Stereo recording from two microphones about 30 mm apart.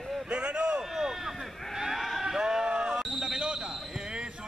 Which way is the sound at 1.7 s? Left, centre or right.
Centre.